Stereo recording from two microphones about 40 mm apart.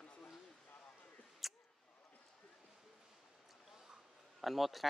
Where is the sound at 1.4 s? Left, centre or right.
Centre.